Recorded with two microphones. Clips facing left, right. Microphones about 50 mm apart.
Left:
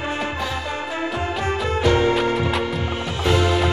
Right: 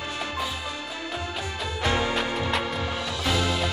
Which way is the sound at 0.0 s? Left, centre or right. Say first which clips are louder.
Left 7 dB; left.